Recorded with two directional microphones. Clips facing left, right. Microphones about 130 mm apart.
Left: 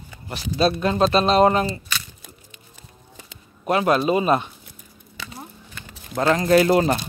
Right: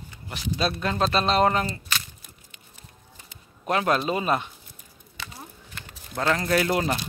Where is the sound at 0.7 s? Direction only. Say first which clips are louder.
Left 6 dB; 20° left (ahead or behind).